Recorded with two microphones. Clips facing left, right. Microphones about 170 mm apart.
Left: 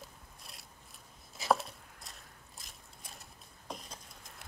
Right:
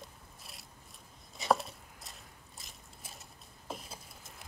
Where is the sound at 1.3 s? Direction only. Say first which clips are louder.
Right 1 dB; centre (ahead or behind).